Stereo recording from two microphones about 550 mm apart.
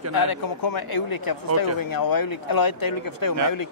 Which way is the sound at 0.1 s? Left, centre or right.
Left.